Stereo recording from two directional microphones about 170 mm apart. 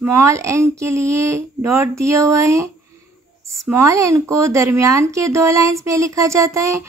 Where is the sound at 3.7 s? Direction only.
20° right (ahead or behind).